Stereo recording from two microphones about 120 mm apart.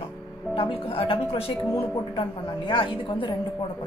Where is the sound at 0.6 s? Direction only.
50° left (ahead or behind).